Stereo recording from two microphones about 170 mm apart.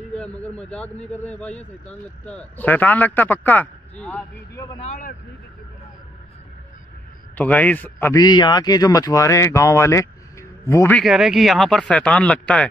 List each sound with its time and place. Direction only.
0.1 s speech: 5° left (ahead or behind)
4.7 s speech: 45° left (ahead or behind)
7.3 s speech: 10° left (ahead or behind)
8.2 s speech: 25° left (ahead or behind)
11.0 s speech: centre (ahead or behind)